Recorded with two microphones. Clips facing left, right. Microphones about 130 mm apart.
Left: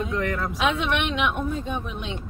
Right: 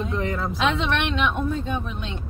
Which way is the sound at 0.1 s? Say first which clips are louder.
Even; 25° right (ahead or behind).